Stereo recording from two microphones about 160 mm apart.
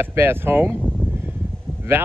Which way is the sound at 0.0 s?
15° right (ahead or behind).